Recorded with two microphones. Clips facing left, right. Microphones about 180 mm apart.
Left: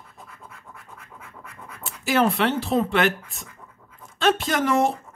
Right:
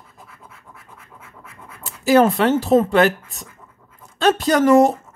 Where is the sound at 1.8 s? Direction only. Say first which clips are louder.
Right 7 dB; 40° right (ahead or behind).